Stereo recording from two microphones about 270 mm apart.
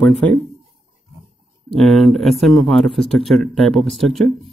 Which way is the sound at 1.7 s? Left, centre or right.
Centre.